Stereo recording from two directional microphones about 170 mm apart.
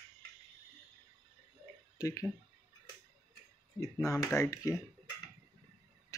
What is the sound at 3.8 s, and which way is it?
Speech, 20° left (ahead or behind).